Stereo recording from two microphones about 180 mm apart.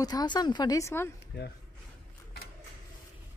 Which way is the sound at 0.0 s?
20° left (ahead or behind).